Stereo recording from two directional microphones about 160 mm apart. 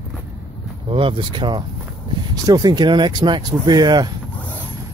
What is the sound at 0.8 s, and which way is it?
Speech, 35° right (ahead or behind).